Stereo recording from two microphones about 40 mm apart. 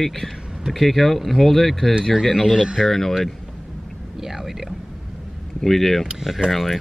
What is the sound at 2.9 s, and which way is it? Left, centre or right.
Speech, centre.